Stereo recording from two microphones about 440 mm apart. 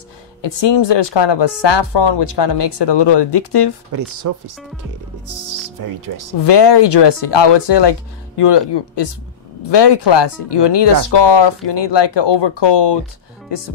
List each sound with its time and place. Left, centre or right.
0.4 s speech: left
3.9 s speech: right
5.8 s speech: right
6.4 s speech: left